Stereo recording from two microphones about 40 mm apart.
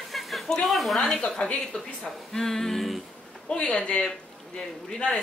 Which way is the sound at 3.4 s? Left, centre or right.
Left.